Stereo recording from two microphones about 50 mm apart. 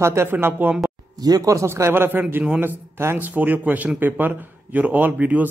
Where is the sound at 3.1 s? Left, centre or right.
Right.